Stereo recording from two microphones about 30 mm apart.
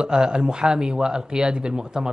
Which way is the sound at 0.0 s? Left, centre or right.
Right.